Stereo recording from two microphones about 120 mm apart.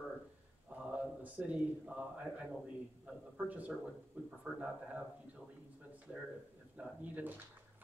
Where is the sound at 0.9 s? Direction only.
10° right (ahead or behind).